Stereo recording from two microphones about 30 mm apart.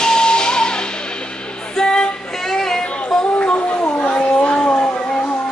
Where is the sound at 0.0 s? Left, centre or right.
Left.